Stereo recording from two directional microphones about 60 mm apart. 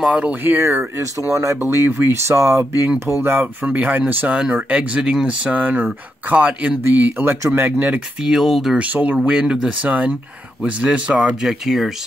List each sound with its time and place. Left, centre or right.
0.1 s speech: centre
0.4 s speech: right
0.9 s speech: right
1.7 s speech: right
3.2 s speech: right
8.2 s speech: centre
8.7 s speech: right
11.4 s speech: centre